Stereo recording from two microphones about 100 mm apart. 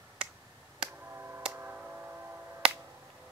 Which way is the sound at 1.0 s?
25° right (ahead or behind).